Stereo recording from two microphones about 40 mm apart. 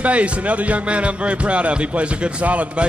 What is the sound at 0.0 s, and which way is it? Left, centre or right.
Speech, right.